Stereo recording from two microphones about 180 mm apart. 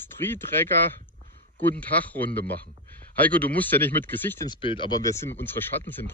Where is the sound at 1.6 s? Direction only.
10° left (ahead or behind).